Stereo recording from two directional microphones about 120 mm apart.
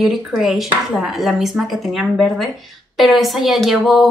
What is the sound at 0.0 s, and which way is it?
A woman's voice, centre (ahead or behind).